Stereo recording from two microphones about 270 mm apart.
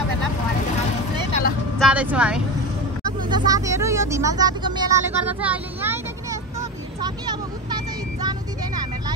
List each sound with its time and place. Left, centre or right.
1.8 s speech: centre
3.3 s speech: centre
7.0 s vehicle: centre